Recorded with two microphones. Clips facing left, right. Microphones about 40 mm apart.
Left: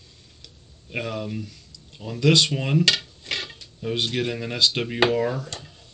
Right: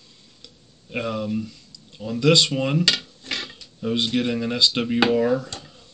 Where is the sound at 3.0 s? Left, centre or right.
Left.